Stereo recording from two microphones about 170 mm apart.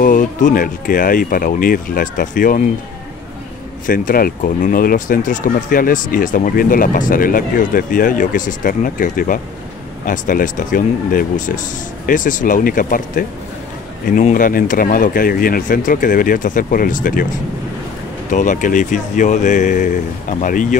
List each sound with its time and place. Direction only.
0.0 s speech: 50° left (ahead or behind)
3.8 s speech: 55° left (ahead or behind)
18.3 s speech: 50° left (ahead or behind)